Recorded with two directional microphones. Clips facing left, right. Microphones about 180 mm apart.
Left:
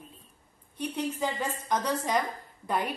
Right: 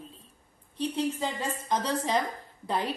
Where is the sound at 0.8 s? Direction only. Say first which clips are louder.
Right 1 dB; 25° right (ahead or behind).